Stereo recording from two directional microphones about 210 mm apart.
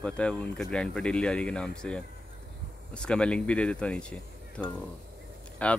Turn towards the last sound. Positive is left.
turn(degrees=5)  # may be behind; listen again after turning